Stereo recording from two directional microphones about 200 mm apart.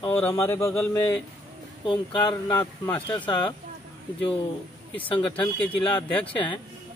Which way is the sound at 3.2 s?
25° left (ahead or behind).